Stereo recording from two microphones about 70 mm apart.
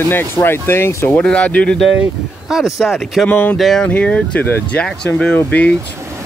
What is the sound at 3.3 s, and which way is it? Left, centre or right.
Speech, left.